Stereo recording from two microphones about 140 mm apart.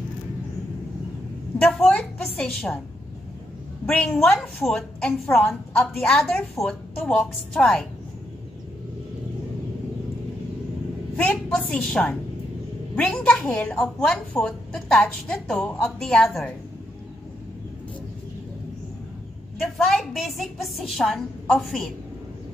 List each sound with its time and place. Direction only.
1.7 s a sound: 5° left (ahead or behind)
3.8 s a woman's voice: 5° left (ahead or behind)
5.2 s a woman's voice: 15° left (ahead or behind)
5.5 s a woman's voice: centre (ahead or behind)
11.1 s a woman's voice: 10° left (ahead or behind)
19.6 s a woman's voice: centre (ahead or behind)